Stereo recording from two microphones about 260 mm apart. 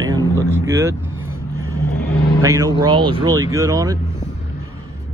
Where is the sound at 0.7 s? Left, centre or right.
Centre.